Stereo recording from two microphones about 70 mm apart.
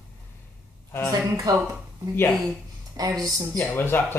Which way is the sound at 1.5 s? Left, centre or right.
Right.